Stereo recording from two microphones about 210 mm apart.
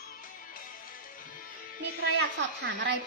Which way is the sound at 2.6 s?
60° right (ahead or behind).